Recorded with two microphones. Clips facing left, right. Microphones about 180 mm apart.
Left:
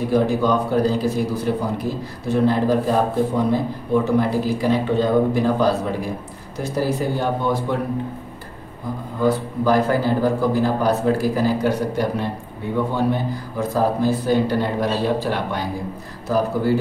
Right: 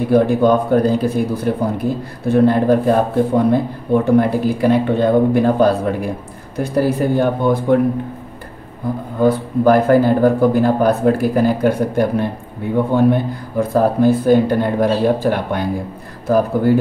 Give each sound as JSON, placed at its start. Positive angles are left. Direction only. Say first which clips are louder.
{"t": 0.1, "sound": "a man's voice", "louder": "right 6 dB", "side_deg": -55}
{"t": 9.2, "sound": "a man's voice", "louder": "right 6 dB", "side_deg": -55}